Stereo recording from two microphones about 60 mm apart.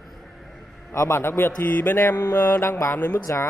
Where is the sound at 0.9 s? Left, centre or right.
Left.